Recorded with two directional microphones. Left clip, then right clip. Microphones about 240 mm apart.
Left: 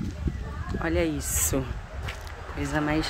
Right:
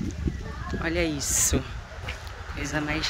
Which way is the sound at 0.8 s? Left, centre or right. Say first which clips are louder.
Even; centre.